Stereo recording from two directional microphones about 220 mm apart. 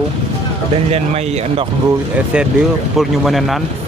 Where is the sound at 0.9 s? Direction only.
30° right (ahead or behind).